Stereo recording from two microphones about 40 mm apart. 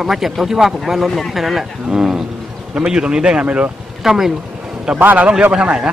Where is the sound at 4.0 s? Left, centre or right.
Centre.